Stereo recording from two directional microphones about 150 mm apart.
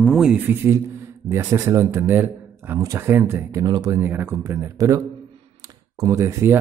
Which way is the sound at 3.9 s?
15° right (ahead or behind).